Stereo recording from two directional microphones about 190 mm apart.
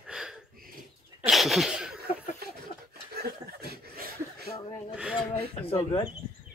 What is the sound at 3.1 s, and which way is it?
Chuckle, 55° right (ahead or behind).